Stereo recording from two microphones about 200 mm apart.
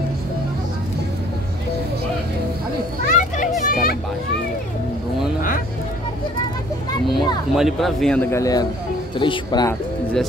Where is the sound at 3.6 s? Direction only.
45° left (ahead or behind).